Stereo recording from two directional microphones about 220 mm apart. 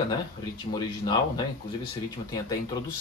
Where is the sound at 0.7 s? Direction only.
20° left (ahead or behind).